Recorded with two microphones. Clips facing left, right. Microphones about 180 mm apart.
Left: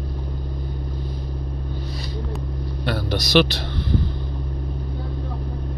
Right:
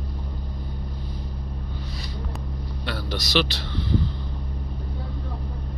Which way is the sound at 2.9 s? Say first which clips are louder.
Left 6 dB; 50° left (ahead or behind).